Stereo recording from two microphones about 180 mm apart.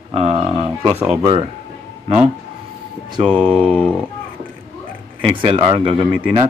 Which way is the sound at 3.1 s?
30° right (ahead or behind).